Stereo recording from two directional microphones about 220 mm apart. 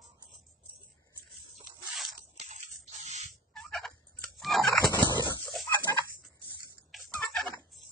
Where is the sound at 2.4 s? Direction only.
30° right (ahead or behind).